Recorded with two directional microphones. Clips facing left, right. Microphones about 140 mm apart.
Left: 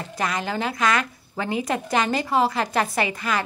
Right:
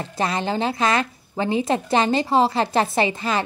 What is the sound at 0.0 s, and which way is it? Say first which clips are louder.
Speech: right 3 dB; 30° right (ahead or behind).